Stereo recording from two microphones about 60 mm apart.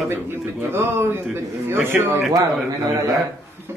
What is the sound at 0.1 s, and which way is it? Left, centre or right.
A man's voice, right.